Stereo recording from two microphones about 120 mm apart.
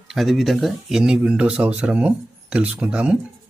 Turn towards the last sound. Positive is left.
turn(degrees=-10)  # may be behind; listen again after turning